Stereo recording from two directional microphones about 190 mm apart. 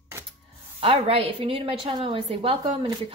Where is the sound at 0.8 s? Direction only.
30° right (ahead or behind).